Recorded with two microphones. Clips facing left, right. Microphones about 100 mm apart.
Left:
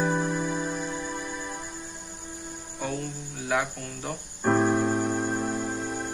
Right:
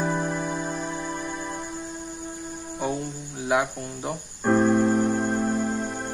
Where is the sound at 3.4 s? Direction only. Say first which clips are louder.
Right 4 dB; 20° right (ahead or behind).